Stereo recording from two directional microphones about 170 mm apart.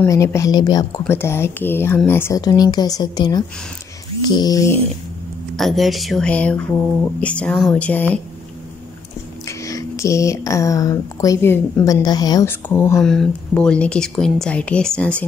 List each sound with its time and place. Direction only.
0.0 s speech: 15° left (ahead or behind)
5.6 s a woman's voice: centre (ahead or behind)
9.5 s speech: 20° left (ahead or behind)
13.0 s speech: 5° left (ahead or behind)